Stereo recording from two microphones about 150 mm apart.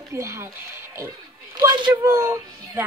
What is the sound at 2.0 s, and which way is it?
Speech, 15° right (ahead or behind).